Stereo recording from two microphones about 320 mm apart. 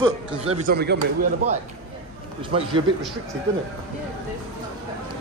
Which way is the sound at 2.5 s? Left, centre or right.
Centre.